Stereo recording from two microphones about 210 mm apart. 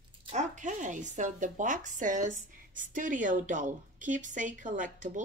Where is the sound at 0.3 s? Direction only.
35° right (ahead or behind).